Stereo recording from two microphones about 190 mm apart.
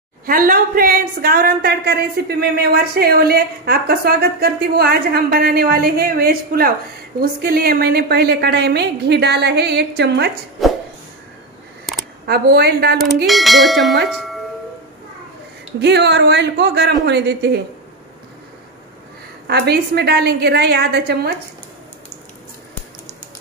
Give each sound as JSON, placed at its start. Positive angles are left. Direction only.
{"t": 0.3, "sound": "a woman's voice", "side_deg": -50}
{"t": 10.6, "sound": "a sound", "side_deg": 0}
{"t": 12.3, "sound": "a woman's voice", "side_deg": -55}
{"t": 13.3, "sound": "speech", "side_deg": 0}
{"t": 15.8, "sound": "a woman's voice", "side_deg": -65}
{"t": 19.4, "sound": "a woman's voice", "side_deg": -60}